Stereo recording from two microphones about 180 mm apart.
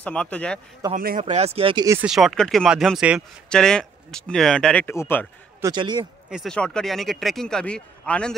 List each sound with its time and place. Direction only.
0.0 s speech: 5° left (ahead or behind)
0.9 s speech: 50° right (ahead or behind)
1.3 s speech: 35° right (ahead or behind)
2.0 s speech: centre (ahead or behind)
5.6 s a man's voice: 25° right (ahead or behind)
6.3 s speech: 5° left (ahead or behind)